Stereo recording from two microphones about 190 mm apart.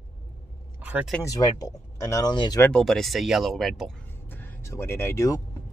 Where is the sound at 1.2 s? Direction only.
20° left (ahead or behind).